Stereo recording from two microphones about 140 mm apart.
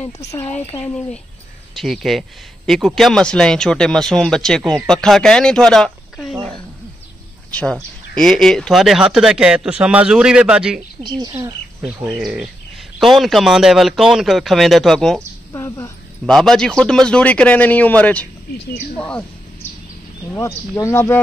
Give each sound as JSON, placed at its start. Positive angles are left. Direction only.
{"t": 0.2, "sound": "speech", "side_deg": 20}
{"t": 1.8, "sound": "speech", "side_deg": 0}
{"t": 7.5, "sound": "speech", "side_deg": 5}
{"t": 11.0, "sound": "speech", "side_deg": -30}
{"t": 11.3, "sound": "speech", "side_deg": -15}
{"t": 12.1, "sound": "speech", "side_deg": 0}
{"t": 15.5, "sound": "a sound", "side_deg": 25}
{"t": 16.3, "sound": "a man's voice", "side_deg": 5}
{"t": 20.3, "sound": "speech", "side_deg": 20}